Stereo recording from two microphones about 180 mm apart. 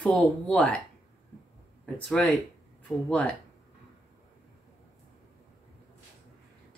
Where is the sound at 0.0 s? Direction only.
5° left (ahead or behind).